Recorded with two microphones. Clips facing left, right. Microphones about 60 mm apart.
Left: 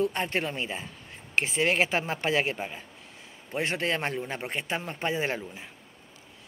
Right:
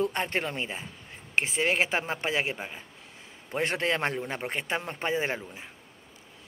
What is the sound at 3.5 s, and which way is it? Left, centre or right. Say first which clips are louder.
A man's voice: right 1 dB; right.